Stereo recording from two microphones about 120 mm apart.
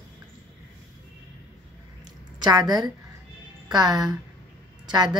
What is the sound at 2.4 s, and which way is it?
A woman's voice, 35° right (ahead or behind).